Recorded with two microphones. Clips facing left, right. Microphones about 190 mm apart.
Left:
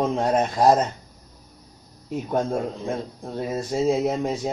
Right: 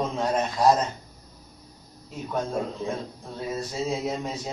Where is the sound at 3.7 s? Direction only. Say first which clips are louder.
Left 9 dB; 50° left (ahead or behind).